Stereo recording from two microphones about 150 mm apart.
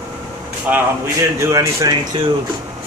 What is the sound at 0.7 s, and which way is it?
Speech, 20° right (ahead or behind).